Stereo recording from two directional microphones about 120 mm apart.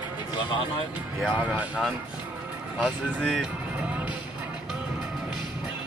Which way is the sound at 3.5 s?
10° right (ahead or behind).